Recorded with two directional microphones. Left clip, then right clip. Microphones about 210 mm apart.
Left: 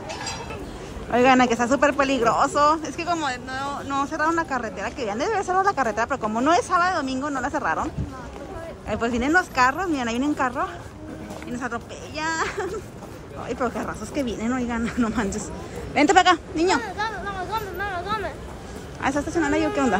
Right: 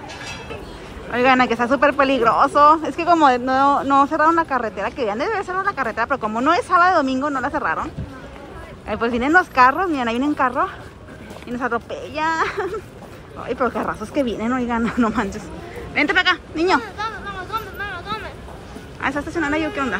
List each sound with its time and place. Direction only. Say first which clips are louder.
1.1 s a man's voice: right 2 dB; 10° left (ahead or behind)
15.9 s a man's voice: left 1 dB; 15° left (ahead or behind)
16.8 s a sound: even; 50° left (ahead or behind)
18.9 s a man's voice: right 1 dB; 10° left (ahead or behind)